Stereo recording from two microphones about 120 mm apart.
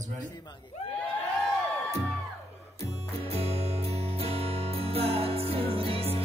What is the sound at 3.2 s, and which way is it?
Music, 55° right (ahead or behind).